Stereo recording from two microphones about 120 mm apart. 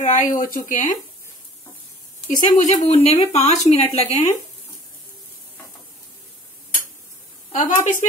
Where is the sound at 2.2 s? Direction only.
85° left; by 4.3 s 65° left (ahead or behind).